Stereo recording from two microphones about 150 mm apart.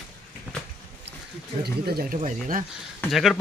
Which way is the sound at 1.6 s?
90° right.